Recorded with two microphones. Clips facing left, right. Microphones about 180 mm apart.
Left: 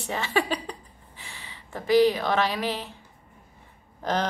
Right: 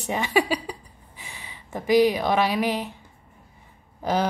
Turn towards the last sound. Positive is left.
turn(degrees=-10)  # may be behind; listen again after turning